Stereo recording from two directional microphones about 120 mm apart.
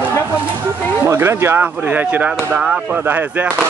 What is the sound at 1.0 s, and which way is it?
Speech, 20° right (ahead or behind).